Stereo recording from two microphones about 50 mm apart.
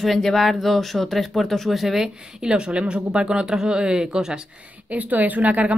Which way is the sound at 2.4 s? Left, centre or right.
Centre.